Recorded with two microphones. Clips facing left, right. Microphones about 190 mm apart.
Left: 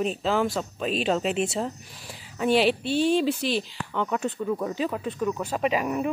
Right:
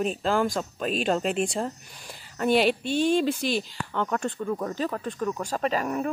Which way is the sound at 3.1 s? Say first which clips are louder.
Right 1 dB; 5° left (ahead or behind).